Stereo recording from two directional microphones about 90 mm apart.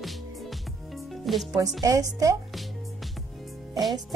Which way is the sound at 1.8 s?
40° right (ahead or behind).